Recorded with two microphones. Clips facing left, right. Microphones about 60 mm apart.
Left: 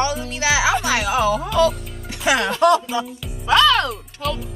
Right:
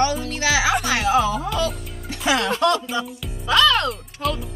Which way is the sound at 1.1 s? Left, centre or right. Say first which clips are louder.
Left 2 dB; left.